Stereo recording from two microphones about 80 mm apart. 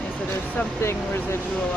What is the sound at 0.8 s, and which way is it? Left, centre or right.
Speech, left.